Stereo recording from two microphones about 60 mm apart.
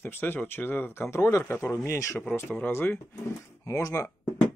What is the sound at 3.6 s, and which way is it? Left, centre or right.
Speech, left.